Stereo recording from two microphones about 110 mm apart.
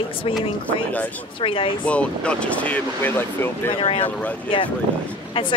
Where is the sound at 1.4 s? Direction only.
55° left (ahead or behind).